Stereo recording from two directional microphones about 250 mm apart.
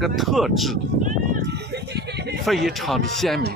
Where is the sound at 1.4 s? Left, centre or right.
Right.